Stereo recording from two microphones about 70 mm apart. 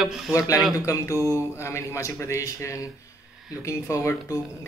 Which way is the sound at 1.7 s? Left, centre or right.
Left.